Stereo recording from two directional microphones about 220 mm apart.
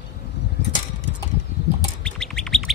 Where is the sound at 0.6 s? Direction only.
50° left (ahead or behind).